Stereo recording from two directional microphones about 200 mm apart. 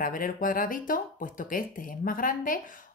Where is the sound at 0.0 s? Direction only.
45° left (ahead or behind).